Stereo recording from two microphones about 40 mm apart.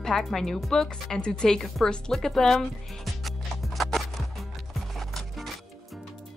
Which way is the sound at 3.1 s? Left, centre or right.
Centre.